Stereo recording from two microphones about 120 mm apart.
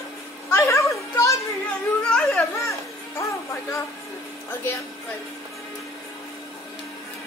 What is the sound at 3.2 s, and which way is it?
Music, 25° left (ahead or behind).